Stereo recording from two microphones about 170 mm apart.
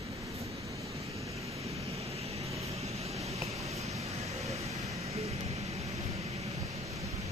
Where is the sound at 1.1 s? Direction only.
35° right (ahead or behind).